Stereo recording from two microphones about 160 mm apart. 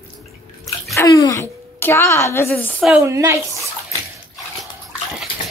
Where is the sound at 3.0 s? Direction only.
20° right (ahead or behind).